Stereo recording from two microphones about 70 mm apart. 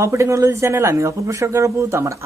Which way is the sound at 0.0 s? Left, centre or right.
Right.